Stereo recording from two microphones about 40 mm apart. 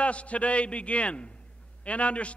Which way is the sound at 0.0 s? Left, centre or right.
Left.